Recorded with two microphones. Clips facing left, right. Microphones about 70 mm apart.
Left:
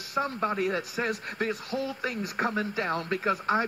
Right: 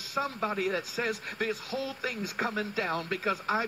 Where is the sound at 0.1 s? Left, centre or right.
Left.